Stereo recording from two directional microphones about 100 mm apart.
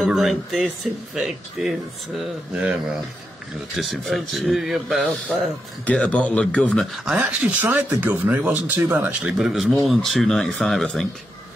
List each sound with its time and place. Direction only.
0.0 s speech: centre (ahead or behind)
3.7 s speech: centre (ahead or behind)
5.9 s speech: 10° left (ahead or behind)
7.1 s speech: 10° right (ahead or behind)
9.2 s speech: 5° right (ahead or behind)